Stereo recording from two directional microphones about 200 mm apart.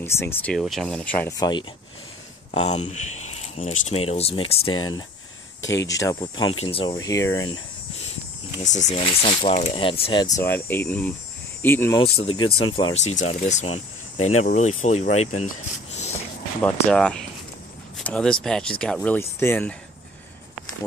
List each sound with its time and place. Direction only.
0.0 s speech: 10° left (ahead or behind)
1.4 s speech: 20° left (ahead or behind)
2.5 s speech: 35° left (ahead or behind); by 7.3 s 15° left (ahead or behind)
8.5 s speech: 35° left (ahead or behind); by 12.0 s 10° left (ahead or behind)
12.3 s speech: 90° left
12.7 s speech: 30° left (ahead or behind)
16.8 s speech: 5° left (ahead or behind)
17.9 s a sound: 5° left (ahead or behind)
18.4 s speech: 5° left (ahead or behind)